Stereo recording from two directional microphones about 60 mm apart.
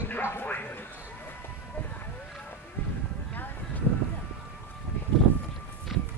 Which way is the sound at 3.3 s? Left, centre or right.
Left.